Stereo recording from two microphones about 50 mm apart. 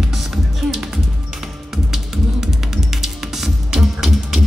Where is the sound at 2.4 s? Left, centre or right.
Centre.